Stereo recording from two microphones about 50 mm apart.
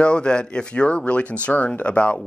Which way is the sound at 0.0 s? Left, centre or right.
Centre.